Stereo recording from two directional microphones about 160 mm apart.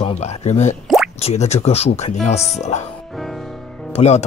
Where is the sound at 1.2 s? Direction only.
45° left (ahead or behind).